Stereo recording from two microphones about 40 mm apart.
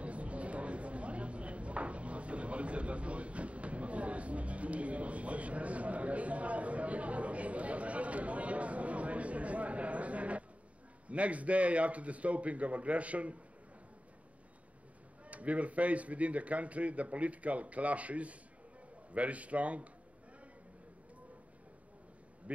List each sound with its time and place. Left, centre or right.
0.0 s chopping: right
11.1 s speech: right
15.2 s speech: right